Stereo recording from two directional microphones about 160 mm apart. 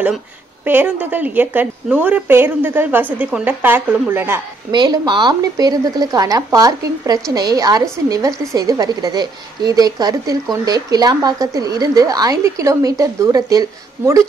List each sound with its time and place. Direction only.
0.7 s a woman's voice: 10° right (ahead or behind)
4.7 s a woman's voice: 25° right (ahead or behind)